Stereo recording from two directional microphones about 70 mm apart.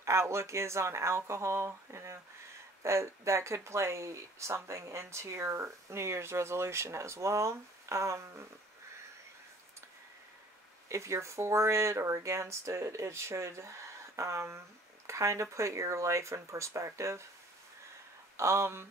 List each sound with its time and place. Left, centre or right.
0.0 s speech: right
10.9 s speech: right
18.3 s speech: right